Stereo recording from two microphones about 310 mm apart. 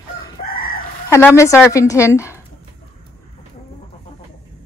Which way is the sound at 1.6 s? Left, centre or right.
Centre.